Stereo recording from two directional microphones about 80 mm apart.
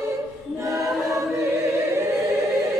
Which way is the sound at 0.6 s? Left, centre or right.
Right.